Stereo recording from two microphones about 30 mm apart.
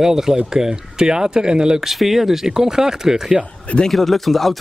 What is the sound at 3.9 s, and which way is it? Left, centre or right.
Speech, centre.